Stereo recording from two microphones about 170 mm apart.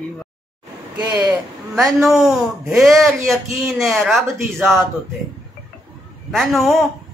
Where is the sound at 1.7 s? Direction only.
Centre (ahead or behind).